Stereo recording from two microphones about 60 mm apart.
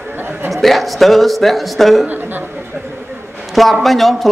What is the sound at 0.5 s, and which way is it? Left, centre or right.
A man's voice, centre.